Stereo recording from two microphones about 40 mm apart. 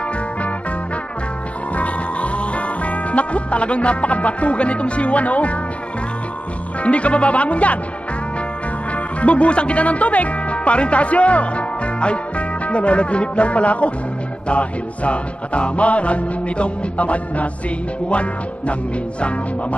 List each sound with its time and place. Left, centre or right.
1.8 s music: left
6.8 s music: left
8.9 s speech: left
14.5 s music: left
18.7 s music: left